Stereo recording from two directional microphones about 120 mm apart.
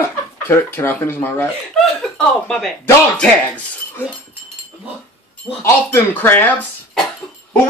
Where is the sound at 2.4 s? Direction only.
5° left (ahead or behind).